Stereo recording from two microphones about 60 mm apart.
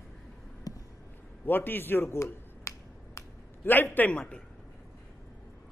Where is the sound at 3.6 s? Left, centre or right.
Left.